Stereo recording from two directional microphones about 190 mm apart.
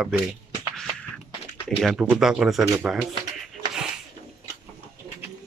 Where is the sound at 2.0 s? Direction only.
5° right (ahead or behind).